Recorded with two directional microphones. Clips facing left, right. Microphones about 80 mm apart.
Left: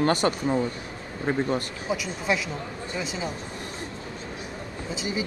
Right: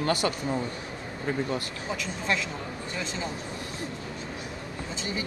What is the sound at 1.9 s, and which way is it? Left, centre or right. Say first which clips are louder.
Speech: left 3 dB; centre.